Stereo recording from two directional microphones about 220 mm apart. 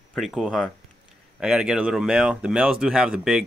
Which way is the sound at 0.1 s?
Centre (ahead or behind).